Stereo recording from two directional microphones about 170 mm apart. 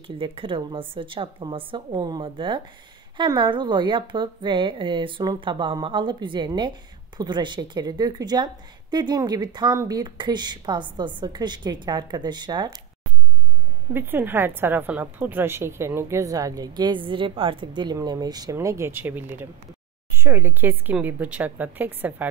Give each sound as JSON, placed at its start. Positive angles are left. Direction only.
{"t": 0.0, "sound": "a woman's voice", "side_deg": -30}
{"t": 13.9, "sound": "a woman's voice", "side_deg": -10}